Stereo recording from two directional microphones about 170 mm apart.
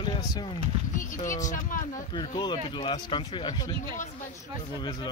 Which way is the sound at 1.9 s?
25° left (ahead or behind).